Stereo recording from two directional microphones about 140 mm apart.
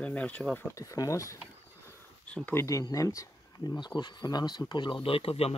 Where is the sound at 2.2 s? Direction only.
10° left (ahead or behind).